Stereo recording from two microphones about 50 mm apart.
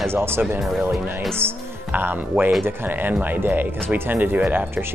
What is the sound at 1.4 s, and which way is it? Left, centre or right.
Speech, right.